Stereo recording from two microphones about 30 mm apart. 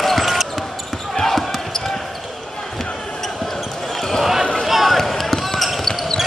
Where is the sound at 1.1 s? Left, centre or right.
Centre.